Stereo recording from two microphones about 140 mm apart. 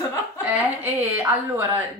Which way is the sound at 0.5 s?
15° right (ahead or behind).